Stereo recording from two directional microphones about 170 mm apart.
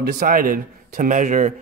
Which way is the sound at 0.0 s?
60° right (ahead or behind).